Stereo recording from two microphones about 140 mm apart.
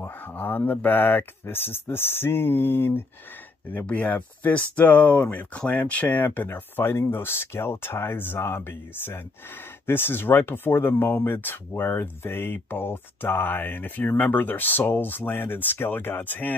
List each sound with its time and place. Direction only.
0.0 s speech: 15° left (ahead or behind)